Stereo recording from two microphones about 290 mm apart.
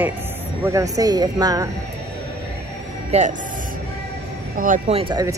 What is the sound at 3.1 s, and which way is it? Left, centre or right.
Speech, right.